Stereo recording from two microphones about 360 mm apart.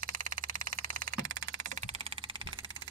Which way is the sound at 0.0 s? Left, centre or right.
Right.